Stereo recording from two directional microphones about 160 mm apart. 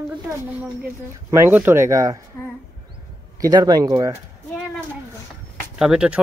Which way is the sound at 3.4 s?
25° right (ahead or behind).